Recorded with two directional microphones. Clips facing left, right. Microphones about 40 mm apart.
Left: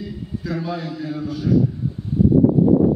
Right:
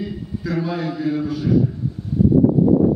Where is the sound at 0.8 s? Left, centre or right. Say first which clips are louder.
Right 6 dB; right.